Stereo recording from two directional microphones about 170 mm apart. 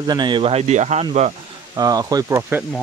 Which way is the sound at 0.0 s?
25° right (ahead or behind).